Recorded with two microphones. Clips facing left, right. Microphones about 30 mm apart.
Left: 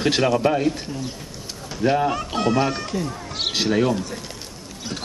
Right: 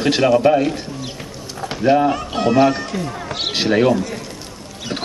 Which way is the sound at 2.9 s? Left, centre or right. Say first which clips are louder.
Right 3 dB; right.